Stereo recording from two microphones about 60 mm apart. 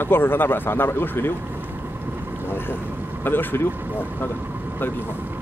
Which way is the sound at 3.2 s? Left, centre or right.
Left.